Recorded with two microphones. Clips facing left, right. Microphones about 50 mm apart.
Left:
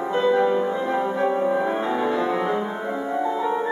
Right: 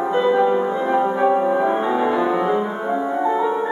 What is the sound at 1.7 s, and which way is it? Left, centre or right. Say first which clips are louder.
Music: right 4 dB; centre.